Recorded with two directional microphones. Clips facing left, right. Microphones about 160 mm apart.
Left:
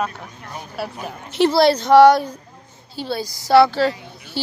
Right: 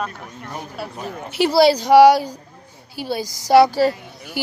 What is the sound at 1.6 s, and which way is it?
Speech, 10° right (ahead or behind).